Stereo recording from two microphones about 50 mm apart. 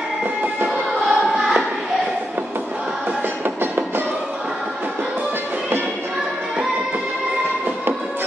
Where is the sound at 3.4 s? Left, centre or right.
Right.